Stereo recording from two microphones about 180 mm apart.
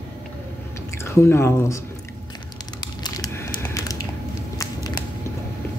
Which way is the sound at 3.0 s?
20° left (ahead or behind).